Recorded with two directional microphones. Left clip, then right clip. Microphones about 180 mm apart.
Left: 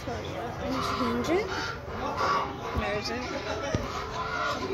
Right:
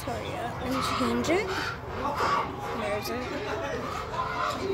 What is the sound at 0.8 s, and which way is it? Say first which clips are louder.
Speech: right 2 dB; 10° right (ahead or behind).